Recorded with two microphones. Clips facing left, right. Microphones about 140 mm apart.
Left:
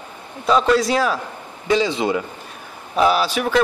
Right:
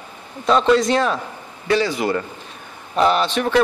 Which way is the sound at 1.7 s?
20° left (ahead or behind).